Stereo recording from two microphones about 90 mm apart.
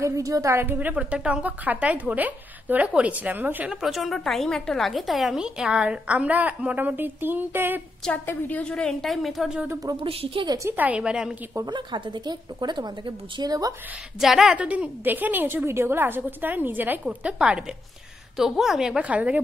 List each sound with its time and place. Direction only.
0.0 s a woman's voice: 35° right (ahead or behind)
0.7 s a woman's voice: 15° right (ahead or behind)
3.8 s a woman's voice: centre (ahead or behind); by 7.8 s 25° right (ahead or behind)
8.1 s a woman's voice: 20° left (ahead or behind); by 9.6 s centre (ahead or behind)
9.9 s a woman's voice: 75° right (ahead or behind)
10.8 s a woman's voice: 15° right (ahead or behind)
11.6 s speech: 60° right (ahead or behind)
14.2 s a woman's voice: 5° right (ahead or behind)